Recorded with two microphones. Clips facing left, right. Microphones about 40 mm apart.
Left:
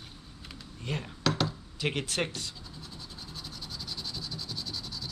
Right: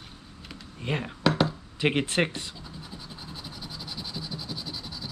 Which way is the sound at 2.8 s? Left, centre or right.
Centre.